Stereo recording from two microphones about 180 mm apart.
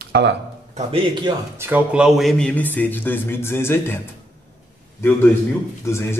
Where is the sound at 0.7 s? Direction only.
30° right (ahead or behind).